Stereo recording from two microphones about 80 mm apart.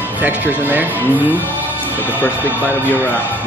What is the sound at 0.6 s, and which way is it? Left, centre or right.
Speech, right.